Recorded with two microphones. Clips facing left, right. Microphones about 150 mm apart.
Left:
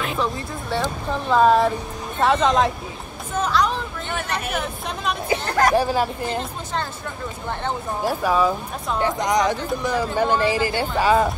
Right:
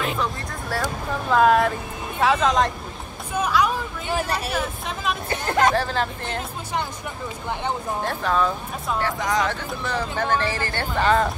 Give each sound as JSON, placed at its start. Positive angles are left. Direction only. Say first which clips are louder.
{"t": 0.2, "sound": "speech", "louder": "left 2 dB", "side_deg": 0}
{"t": 5.5, "sound": "speech", "louder": "even", "side_deg": -20}
{"t": 5.8, "sound": "speech", "louder": "left 4 dB", "side_deg": 10}
{"t": 8.0, "sound": "speech", "louder": "left 4 dB", "side_deg": 10}
{"t": 9.0, "sound": "speech", "louder": "left 5 dB", "side_deg": 20}